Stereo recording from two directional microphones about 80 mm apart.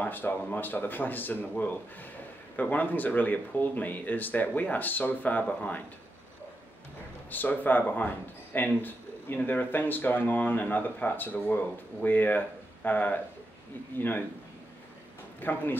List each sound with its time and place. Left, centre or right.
0.0 s speech: left
7.2 s speech: left
15.4 s speech: left